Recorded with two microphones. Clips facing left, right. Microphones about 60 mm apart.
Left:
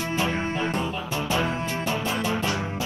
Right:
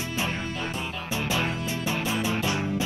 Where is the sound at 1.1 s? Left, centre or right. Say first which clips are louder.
Left 1 dB; left.